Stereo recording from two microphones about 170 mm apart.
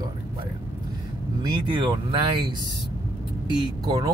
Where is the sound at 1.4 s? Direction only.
30° right (ahead or behind).